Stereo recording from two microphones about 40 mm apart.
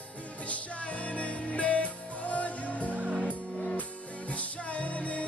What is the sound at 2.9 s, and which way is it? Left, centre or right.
Music, right.